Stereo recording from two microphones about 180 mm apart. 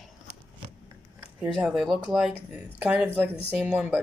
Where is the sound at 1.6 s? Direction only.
5° right (ahead or behind).